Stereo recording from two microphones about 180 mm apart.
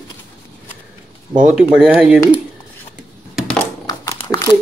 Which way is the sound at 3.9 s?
20° left (ahead or behind).